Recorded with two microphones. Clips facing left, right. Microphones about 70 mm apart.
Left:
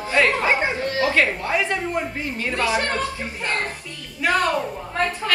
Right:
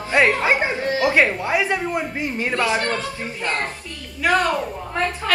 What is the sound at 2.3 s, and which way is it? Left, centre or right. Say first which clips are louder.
Speech: right 1 dB; right.